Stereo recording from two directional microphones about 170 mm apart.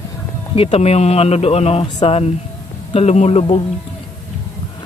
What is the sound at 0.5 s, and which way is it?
Speech, 35° left (ahead or behind).